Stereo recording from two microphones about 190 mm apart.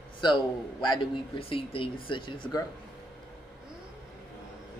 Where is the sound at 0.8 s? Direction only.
25° left (ahead or behind).